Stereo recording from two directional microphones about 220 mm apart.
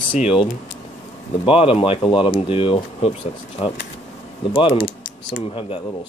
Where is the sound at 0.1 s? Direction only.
30° left (ahead or behind).